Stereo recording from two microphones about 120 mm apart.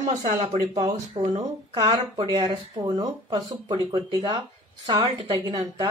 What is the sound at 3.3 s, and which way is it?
Speech, 50° right (ahead or behind).